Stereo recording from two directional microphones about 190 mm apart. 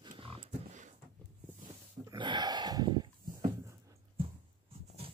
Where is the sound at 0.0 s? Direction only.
25° right (ahead or behind).